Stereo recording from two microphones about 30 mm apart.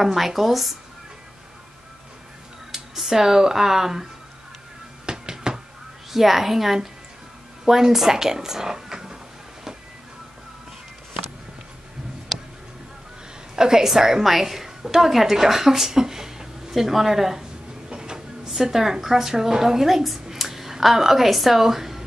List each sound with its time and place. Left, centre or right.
0.0 s speech: centre
2.7 s speech: centre
5.0 s music: right
6.1 s a woman's voice: centre
13.6 s a woman's voice: centre
16.7 s a woman's voice: centre
17.8 s train: right
18.5 s a woman's voice: centre